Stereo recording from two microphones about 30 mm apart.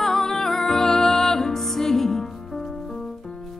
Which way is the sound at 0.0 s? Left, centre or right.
Centre.